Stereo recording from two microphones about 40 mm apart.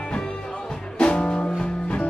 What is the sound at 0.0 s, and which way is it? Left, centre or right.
Music, left.